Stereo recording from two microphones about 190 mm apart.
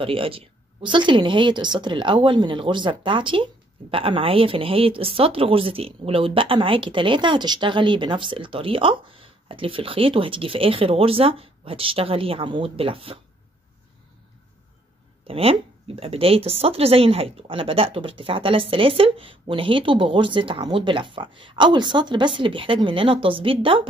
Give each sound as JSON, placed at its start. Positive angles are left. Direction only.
{"t": 0.0, "sound": "speech", "side_deg": -30}
{"t": 15.2, "sound": "speech", "side_deg": -30}